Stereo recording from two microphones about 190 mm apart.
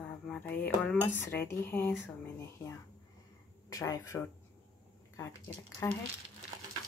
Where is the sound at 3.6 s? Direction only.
20° left (ahead or behind).